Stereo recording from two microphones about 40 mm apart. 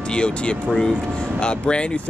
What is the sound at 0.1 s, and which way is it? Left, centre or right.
Speech, left.